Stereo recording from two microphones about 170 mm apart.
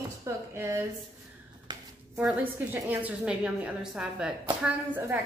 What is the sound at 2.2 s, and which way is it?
A woman's voice, 10° right (ahead or behind).